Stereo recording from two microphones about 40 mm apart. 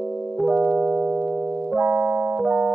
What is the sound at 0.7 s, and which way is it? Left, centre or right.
Music, right.